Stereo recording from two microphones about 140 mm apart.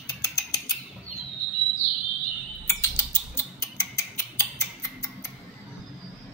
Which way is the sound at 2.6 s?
15° left (ahead or behind).